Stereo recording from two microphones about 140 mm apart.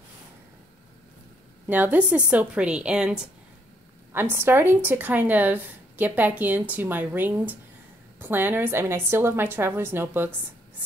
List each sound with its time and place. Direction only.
1.7 s a woman's voice: 10° right (ahead or behind)